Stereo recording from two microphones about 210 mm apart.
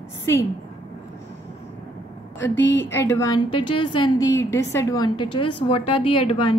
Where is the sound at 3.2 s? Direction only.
20° left (ahead or behind).